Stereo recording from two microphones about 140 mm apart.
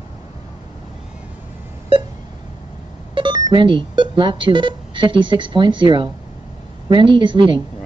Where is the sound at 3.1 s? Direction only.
35° right (ahead or behind).